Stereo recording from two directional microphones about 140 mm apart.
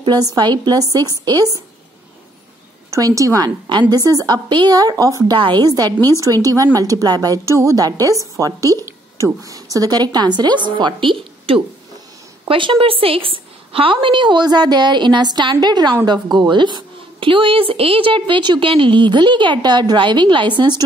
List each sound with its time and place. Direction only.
0.0 s a woman's voice: 30° right (ahead or behind)
2.9 s a woman's voice: 25° right (ahead or behind)